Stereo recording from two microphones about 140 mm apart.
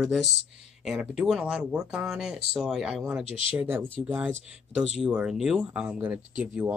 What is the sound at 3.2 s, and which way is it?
Speech, 40° left (ahead or behind).